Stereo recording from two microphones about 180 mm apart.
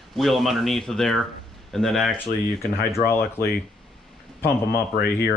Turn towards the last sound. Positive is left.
turn(degrees=60)  # may be behind; listen again after turning